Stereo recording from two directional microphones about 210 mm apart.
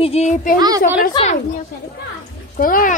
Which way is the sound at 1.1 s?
30° left (ahead or behind).